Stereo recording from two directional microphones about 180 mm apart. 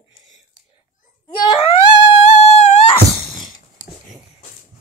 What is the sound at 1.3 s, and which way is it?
Wail, 25° left (ahead or behind).